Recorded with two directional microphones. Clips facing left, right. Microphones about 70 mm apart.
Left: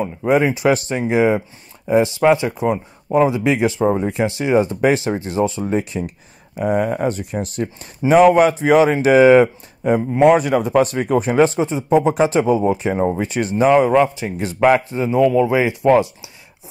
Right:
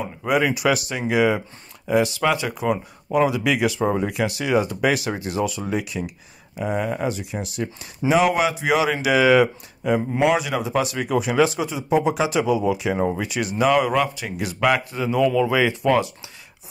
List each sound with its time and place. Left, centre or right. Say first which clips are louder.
0.3 s a man's voice: left 4 dB; left